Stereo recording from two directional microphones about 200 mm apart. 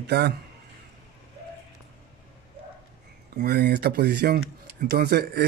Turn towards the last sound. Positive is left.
turn(degrees=-55)  # may be behind; listen again after turning